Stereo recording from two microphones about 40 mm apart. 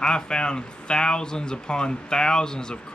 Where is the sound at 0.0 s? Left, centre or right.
Left.